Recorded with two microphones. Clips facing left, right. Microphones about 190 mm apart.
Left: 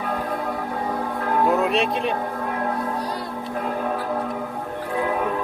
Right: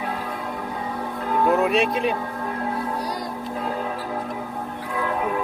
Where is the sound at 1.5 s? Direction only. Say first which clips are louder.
Right 1 dB; centre (ahead or behind).